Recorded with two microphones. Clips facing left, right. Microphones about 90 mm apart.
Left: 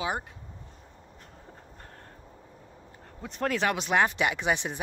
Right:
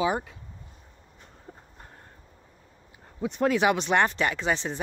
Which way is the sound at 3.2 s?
5° right (ahead or behind).